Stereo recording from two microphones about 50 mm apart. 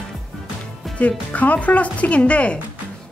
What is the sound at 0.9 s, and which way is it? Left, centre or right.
Speech, left.